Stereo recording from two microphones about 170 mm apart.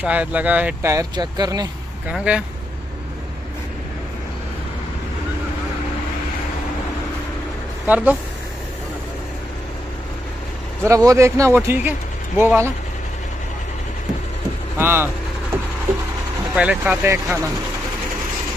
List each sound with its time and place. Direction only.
0.0 s speech: 10° right (ahead or behind)
0.9 s speech: 25° right (ahead or behind)
2.0 s speech: 5° right (ahead or behind)
7.8 s speech: 10° right (ahead or behind)
10.9 s speech: 20° right (ahead or behind)
14.8 s speech: 15° right (ahead or behind)
16.5 s speech: 10° right (ahead or behind)